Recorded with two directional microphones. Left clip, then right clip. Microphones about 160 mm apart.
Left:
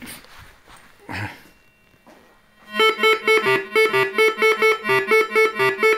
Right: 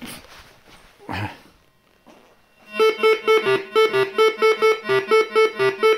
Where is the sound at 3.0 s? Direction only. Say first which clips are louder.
Even; 65° left (ahead or behind).